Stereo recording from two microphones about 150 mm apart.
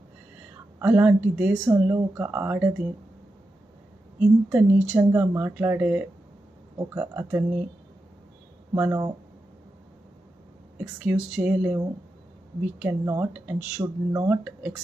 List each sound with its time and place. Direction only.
0.7 s speech: 10° right (ahead or behind)
4.2 s speech: 10° right (ahead or behind)
8.7 s speech: 20° right (ahead or behind)
11.0 s speech: 10° right (ahead or behind)
14.1 s speech: 20° right (ahead or behind)